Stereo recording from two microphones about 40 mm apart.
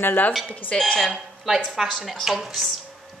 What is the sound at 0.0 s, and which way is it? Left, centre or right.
Speech, left.